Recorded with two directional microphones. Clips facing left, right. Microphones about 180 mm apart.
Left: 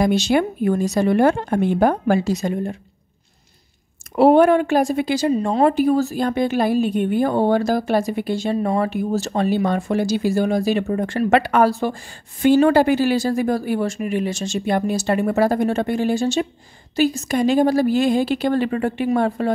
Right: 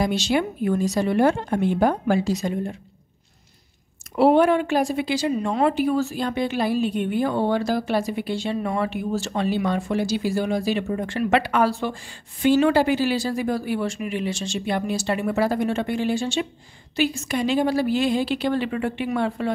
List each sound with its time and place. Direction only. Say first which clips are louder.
0.0 s a woman's voice: left 4 dB; 50° left (ahead or behind)
4.1 s a woman's voice: left 4 dB; 45° left (ahead or behind)